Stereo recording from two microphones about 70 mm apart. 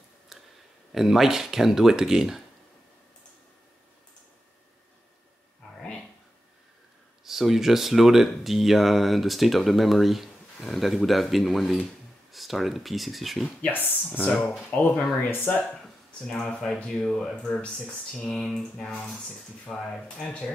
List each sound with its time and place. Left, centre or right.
0.3 s a sound: centre
0.9 s speech: centre
5.8 s a sound: centre
7.2 s speech: centre
13.6 s speech: left
16.4 s speech: centre